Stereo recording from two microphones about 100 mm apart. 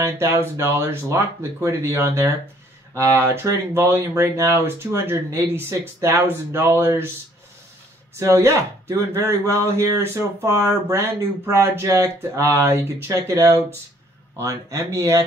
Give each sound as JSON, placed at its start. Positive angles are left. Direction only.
{"t": 0.0, "sound": "speech", "side_deg": -25}
{"t": 8.2, "sound": "speech", "side_deg": -25}